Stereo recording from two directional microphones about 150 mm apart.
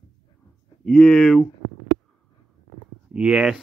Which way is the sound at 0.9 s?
5° left (ahead or behind).